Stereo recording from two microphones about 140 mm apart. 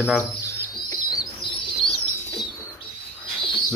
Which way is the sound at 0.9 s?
30° left (ahead or behind).